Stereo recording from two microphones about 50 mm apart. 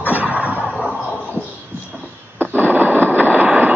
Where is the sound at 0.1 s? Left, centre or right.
Right.